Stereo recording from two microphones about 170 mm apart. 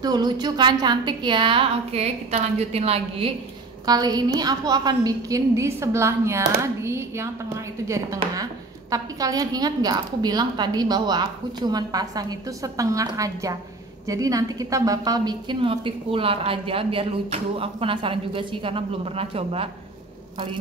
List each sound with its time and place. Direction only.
0.0 s a woman's voice: 25° right (ahead or behind)
3.8 s a woman's voice: 25° right (ahead or behind)